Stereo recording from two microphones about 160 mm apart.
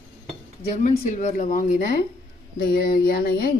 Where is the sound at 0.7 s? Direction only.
50° left (ahead or behind).